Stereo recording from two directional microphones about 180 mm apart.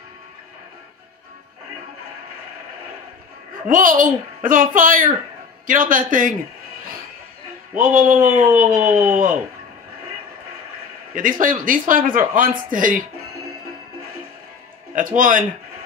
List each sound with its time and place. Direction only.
3.7 s a child's voice: 50° right (ahead or behind)
7.7 s a child's voice: 50° right (ahead or behind)
11.1 s a child's voice: 50° right (ahead or behind)
15.0 s a child's voice: 50° right (ahead or behind)